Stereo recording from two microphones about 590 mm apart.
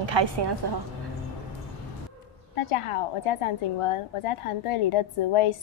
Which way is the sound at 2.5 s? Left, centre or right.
Left.